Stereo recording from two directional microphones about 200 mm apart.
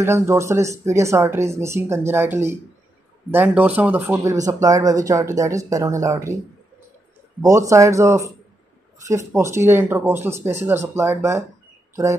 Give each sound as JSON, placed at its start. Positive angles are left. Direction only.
{"t": 0.0, "sound": "speech", "side_deg": -15}
{"t": 7.4, "sound": "speech", "side_deg": -15}
{"t": 9.3, "sound": "speech", "side_deg": -15}